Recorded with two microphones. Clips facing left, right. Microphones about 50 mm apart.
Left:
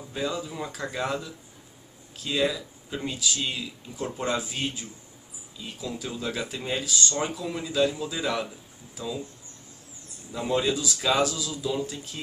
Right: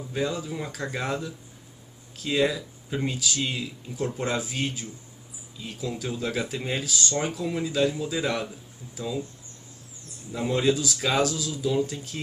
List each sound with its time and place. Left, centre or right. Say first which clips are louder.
0.1 s speech: right 2 dB; centre
2.2 s speech: right 2 dB; centre
3.2 s speech: right 1 dB; centre
10.3 s speech: right 2 dB; centre